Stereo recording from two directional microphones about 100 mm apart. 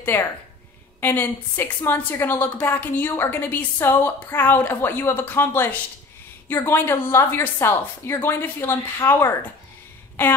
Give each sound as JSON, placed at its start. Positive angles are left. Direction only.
{"t": 0.0, "sound": "a woman's voice", "side_deg": 20}